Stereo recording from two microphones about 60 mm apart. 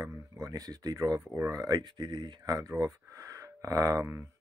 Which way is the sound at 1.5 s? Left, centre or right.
Right.